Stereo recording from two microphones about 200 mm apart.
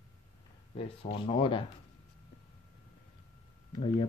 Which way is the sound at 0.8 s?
30° left (ahead or behind).